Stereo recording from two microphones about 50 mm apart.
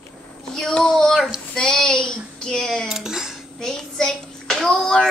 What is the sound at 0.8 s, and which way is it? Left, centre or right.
Child singing, centre.